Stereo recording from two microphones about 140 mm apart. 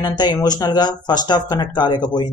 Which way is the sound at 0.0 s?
30° left (ahead or behind).